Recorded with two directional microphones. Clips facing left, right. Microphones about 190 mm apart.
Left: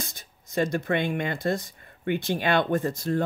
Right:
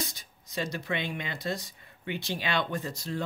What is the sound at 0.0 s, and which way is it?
Speech, 50° left (ahead or behind).